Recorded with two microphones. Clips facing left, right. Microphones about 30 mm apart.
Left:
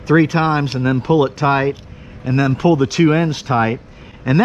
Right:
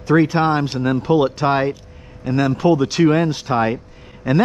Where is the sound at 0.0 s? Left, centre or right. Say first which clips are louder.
Left 1 dB; centre.